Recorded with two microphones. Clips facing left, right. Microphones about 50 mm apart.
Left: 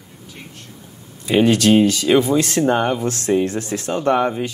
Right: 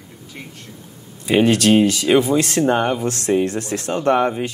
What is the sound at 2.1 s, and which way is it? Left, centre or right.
Speech, right.